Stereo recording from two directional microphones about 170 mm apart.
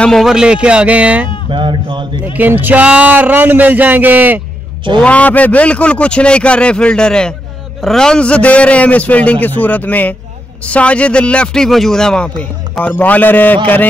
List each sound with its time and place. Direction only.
0.0 s speech: centre (ahead or behind)
1.5 s a sound: 30° right (ahead or behind)
2.3 s speech: 10° right (ahead or behind)
5.0 s speech: 10° left (ahead or behind)